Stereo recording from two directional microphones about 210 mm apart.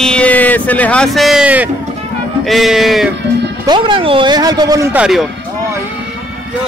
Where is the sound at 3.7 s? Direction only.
25° right (ahead or behind); by 5.2 s 5° right (ahead or behind).